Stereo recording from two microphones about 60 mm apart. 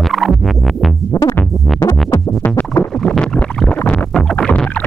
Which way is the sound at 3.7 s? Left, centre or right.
Centre.